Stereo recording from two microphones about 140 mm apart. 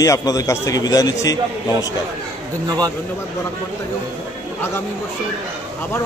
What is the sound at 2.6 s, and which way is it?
Speech, 30° right (ahead or behind).